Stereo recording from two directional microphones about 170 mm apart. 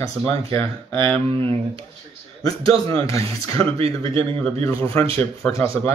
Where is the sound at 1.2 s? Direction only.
30° right (ahead or behind).